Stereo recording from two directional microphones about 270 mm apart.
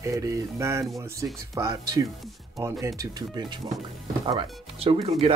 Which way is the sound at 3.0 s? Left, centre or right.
Centre.